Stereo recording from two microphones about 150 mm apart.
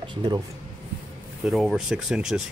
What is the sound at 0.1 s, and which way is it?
Speech, 30° right (ahead or behind).